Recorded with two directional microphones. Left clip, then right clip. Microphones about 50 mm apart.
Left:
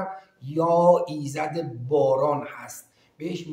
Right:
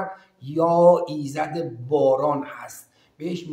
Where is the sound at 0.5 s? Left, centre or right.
Centre.